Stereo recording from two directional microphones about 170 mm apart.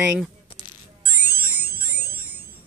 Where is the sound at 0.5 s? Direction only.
25° left (ahead or behind).